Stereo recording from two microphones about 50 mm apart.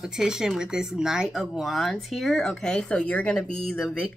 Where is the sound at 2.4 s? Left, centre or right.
Centre.